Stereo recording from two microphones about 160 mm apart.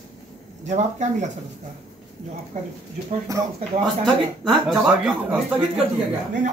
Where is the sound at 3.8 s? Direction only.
Centre (ahead or behind).